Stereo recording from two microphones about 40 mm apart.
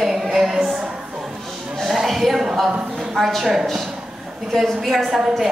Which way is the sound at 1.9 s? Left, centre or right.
Centre.